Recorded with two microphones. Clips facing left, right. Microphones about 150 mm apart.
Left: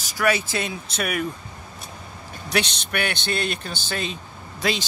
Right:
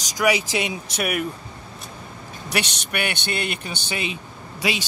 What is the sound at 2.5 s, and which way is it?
A man's voice, 10° right (ahead or behind).